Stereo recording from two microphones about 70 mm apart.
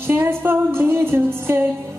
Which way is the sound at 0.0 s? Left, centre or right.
Right.